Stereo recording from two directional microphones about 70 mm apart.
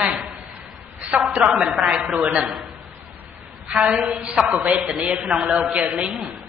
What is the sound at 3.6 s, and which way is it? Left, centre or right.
Speech, centre.